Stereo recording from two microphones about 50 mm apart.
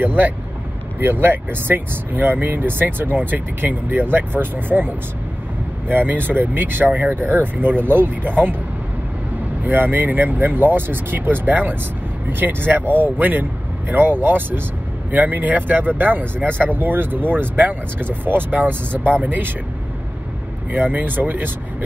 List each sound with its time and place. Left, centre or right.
0.0 s speech: right
9.6 s speech: right
20.7 s speech: right